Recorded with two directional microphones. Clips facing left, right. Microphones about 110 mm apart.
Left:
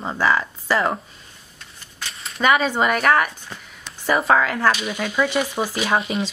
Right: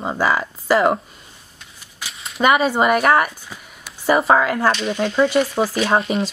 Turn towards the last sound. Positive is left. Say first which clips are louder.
# right 3 dB
turn(degrees=0)  # may be behind; listen again after turning